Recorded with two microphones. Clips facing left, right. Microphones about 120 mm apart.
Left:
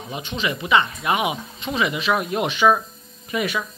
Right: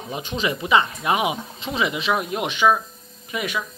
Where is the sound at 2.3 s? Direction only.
15° right (ahead or behind).